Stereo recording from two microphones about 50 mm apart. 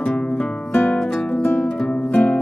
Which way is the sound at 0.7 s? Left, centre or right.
Left.